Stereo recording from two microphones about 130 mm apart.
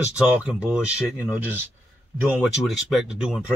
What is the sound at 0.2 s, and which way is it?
Speech, 5° right (ahead or behind).